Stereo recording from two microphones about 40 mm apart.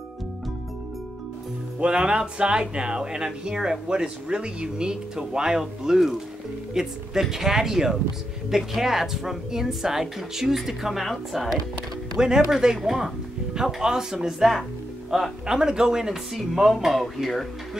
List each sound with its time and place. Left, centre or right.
1.8 s a woman's voice: right; by 11.6 s centre
12.2 s a woman's voice: centre